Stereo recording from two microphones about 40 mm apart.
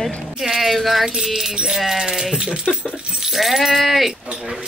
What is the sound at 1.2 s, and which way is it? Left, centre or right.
Sheep, centre.